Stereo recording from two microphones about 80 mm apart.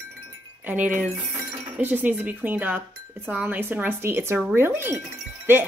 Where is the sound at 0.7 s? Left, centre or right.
Centre.